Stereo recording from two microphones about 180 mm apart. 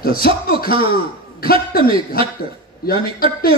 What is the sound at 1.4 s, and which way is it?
Speech, 55° left (ahead or behind).